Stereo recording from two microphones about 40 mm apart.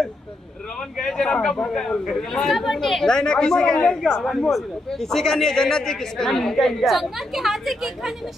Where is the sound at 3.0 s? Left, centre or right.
Centre.